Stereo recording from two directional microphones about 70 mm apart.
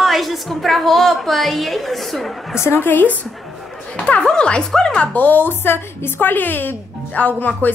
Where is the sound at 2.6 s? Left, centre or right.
Left.